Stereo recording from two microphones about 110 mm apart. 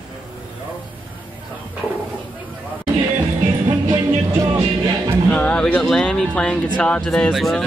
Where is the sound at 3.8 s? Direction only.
40° right (ahead or behind).